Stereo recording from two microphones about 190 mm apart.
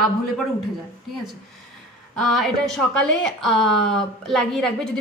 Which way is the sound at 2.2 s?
Centre (ahead or behind).